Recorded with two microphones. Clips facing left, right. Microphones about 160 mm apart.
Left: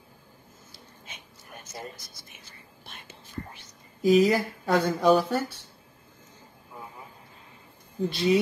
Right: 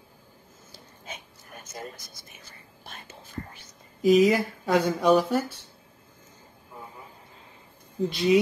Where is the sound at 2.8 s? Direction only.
45° right (ahead or behind).